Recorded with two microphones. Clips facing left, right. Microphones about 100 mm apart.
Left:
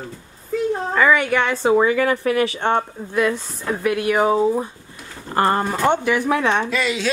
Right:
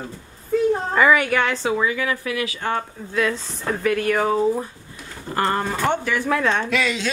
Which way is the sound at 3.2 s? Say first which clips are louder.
Left 2 dB; 10° left (ahead or behind).